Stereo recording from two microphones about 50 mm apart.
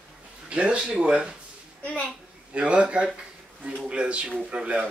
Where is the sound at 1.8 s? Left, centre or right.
Left.